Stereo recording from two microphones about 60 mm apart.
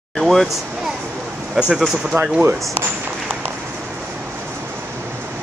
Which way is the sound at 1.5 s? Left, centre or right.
Centre.